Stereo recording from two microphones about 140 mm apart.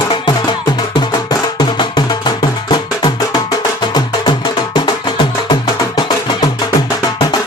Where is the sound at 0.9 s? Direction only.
30° left (ahead or behind).